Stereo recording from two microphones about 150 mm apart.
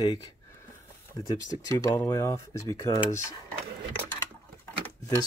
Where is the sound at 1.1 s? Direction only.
25° left (ahead or behind).